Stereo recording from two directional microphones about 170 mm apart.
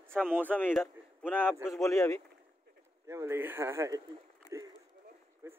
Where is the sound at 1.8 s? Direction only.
15° left (ahead or behind).